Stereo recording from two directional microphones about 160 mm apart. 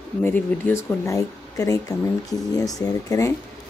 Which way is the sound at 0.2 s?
10° left (ahead or behind).